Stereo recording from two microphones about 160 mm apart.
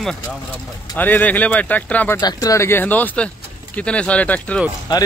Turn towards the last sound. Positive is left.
turn(degrees=30)  # may be behind; listen again after turning